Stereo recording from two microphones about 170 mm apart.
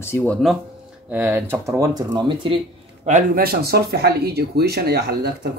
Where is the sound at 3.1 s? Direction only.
45° right (ahead or behind).